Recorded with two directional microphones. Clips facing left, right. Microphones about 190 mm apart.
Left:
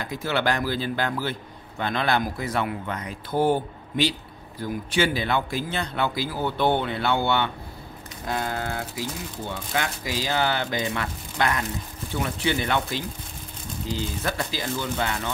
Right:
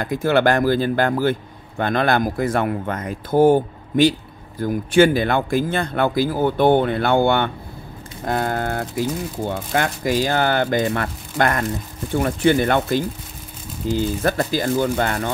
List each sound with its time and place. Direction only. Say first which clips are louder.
0.0 s speech: right 8 dB; 50° right (ahead or behind)